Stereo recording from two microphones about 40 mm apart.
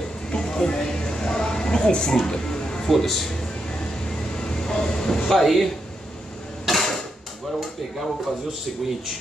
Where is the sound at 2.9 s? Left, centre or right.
Centre.